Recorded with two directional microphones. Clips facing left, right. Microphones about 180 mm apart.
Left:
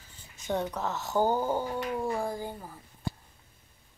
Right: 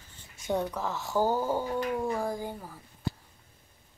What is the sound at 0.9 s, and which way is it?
Speech, 20° left (ahead or behind).